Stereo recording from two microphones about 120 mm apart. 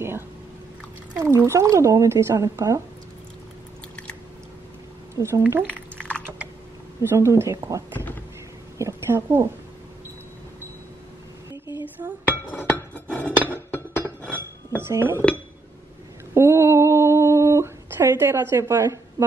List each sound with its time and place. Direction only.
1.2 s speech: 25° right (ahead or behind)
5.1 s speech: 20° right (ahead or behind)
5.9 s typing: 10° left (ahead or behind)
7.0 s speech: 25° right (ahead or behind)
7.9 s speech: 15° left (ahead or behind)
8.7 s speech: 20° right (ahead or behind)
12.3 s chink: 15° left (ahead or behind)
13.5 s music: 20° left (ahead or behind)
14.2 s chink: 15° left (ahead or behind)
14.8 s speech: 20° right (ahead or behind)
16.3 s a sound: 25° right (ahead or behind)